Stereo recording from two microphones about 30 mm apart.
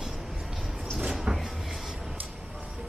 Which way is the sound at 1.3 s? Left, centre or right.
Right.